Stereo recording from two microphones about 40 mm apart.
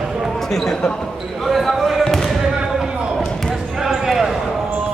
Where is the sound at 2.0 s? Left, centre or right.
Centre.